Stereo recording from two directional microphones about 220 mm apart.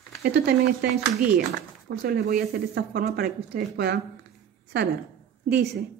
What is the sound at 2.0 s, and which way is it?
A woman's voice, 45° right (ahead or behind).